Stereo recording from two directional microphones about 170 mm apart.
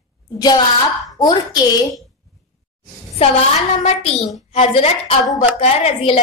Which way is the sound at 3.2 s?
35° left (ahead or behind).